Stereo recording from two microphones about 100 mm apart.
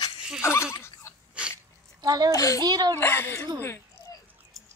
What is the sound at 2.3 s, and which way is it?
Speech, 35° left (ahead or behind).